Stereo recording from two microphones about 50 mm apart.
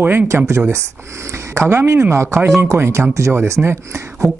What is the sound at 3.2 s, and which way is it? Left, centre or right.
Speech, right.